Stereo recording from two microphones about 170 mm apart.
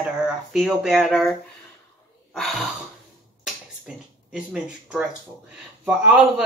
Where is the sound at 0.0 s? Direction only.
5° right (ahead or behind).